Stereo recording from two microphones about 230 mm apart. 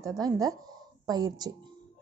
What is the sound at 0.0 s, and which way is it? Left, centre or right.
A woman's voice, centre.